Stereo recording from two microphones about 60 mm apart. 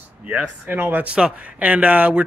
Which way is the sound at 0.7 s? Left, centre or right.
Right.